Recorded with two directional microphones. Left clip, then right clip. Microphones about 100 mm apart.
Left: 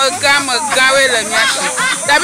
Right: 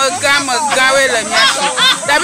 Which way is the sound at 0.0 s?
Centre (ahead or behind).